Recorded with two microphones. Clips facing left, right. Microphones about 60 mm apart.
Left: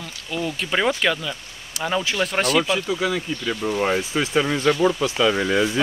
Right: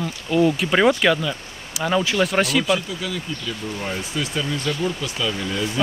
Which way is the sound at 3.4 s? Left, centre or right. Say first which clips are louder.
Left 6 dB; left.